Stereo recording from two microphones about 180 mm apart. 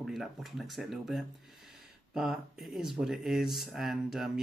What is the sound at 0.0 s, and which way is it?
Speech, centre (ahead or behind).